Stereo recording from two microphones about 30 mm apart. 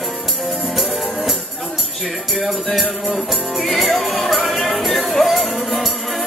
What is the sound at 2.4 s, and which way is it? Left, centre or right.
Music, centre.